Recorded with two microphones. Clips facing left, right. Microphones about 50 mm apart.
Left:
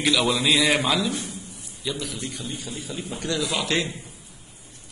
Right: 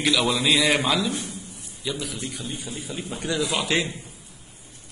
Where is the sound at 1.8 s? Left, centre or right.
Centre.